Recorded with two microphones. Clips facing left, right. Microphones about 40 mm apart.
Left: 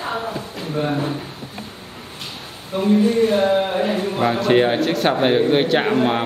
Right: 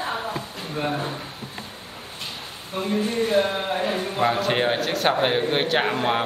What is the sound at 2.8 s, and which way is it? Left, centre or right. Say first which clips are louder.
Speech: left 8 dB; left.